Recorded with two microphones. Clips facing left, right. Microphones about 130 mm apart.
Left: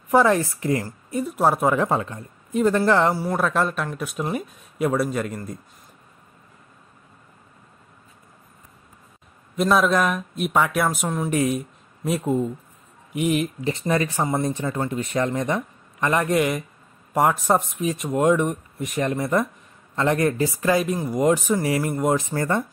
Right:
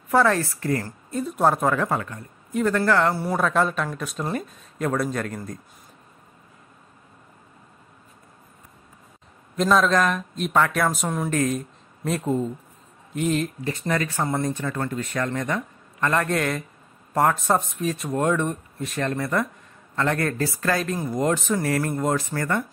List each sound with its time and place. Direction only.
0.1 s a woman's voice: 15° left (ahead or behind)
3.2 s speech: centre (ahead or behind)
9.6 s a woman's voice: 10° left (ahead or behind)
22.1 s speech: 20° left (ahead or behind)